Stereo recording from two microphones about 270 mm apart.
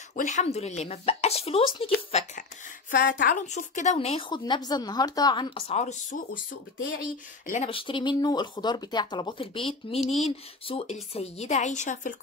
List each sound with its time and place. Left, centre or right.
0.1 s a woman's voice: left